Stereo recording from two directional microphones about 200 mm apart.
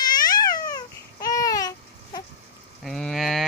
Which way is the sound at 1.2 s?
15° left (ahead or behind).